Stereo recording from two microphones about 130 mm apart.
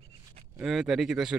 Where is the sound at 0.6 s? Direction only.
Centre (ahead or behind).